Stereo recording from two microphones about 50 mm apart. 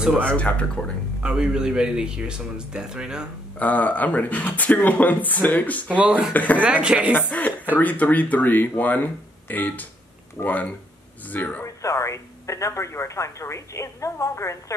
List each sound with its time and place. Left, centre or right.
0.4 s speech: left
1.2 s a man's voice: centre
3.5 s speech: left
5.9 s speech: right
6.3 s speech: left
6.6 s speech: right
7.3 s speech: left
11.6 s speech: left